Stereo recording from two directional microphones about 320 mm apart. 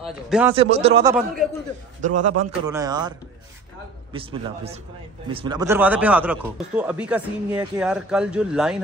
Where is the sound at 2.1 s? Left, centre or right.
Right.